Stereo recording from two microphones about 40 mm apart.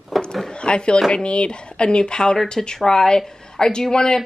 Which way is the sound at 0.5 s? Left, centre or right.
Left.